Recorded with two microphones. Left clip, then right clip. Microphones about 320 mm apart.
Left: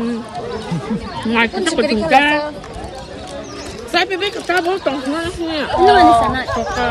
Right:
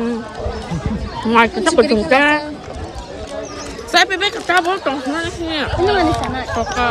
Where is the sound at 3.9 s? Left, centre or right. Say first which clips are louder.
Right 3 dB; centre.